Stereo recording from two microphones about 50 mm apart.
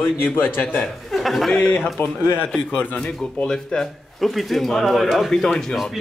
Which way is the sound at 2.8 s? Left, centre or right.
Left.